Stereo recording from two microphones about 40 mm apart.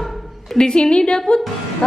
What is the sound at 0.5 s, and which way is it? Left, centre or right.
Speech, centre.